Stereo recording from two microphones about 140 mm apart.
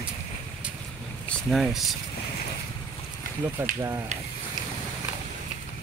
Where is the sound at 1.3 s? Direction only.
Centre (ahead or behind).